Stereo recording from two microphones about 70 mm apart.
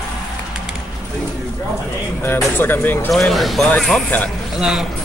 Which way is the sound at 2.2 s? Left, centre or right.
Left.